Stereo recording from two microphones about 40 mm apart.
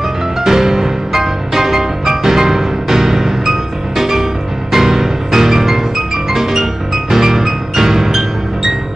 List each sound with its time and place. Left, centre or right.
0.4 s music: centre